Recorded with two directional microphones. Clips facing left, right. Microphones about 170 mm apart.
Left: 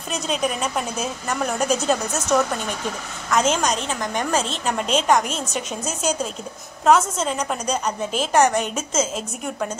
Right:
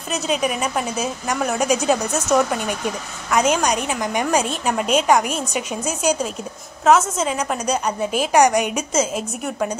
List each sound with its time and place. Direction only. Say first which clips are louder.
0.1 s a woman's voice: right 2 dB; 5° right (ahead or behind)